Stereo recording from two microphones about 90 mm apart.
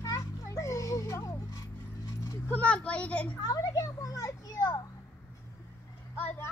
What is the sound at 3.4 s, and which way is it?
Children playing, 40° left (ahead or behind).